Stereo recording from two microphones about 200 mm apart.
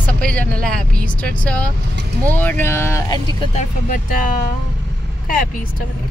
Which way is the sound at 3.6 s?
40° left (ahead or behind).